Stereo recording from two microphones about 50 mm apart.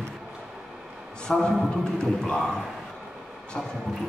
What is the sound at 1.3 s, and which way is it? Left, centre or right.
A man's voice, centre.